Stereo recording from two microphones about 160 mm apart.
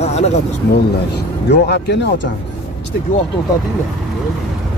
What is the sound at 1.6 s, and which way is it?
Speech, 90° left.